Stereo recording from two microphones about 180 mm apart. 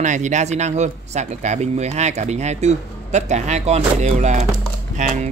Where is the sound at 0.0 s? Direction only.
40° right (ahead or behind).